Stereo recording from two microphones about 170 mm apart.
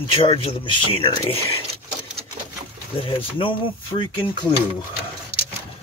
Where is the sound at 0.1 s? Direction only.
30° left (ahead or behind).